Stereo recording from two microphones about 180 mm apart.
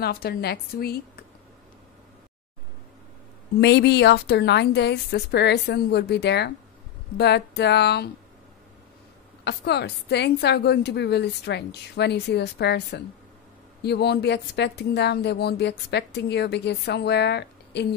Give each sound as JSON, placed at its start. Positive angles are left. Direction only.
{"t": 0.0, "sound": "a woman's voice", "side_deg": 60}
{"t": 3.6, "sound": "speech", "side_deg": 70}
{"t": 9.4, "sound": "speech", "side_deg": 70}